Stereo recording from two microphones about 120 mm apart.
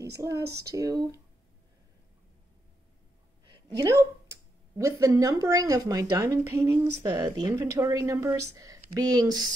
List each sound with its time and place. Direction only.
0.2 s speech: 25° right (ahead or behind)
3.6 s speech: 25° right (ahead or behind)